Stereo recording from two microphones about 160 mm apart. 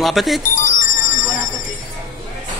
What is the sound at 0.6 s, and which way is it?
Music, 55° left (ahead or behind).